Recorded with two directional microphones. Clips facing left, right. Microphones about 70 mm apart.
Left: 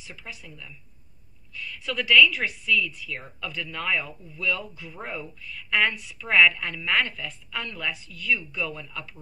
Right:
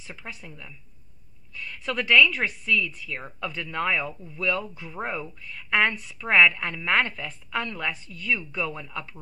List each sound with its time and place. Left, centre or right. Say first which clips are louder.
0.0 s speech: right 2 dB; right
4.4 s speech: right 2 dB; right